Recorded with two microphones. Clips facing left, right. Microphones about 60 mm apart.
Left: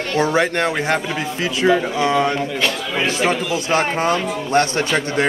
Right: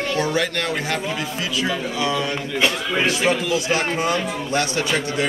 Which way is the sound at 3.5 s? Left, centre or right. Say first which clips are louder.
Left 2 dB; left.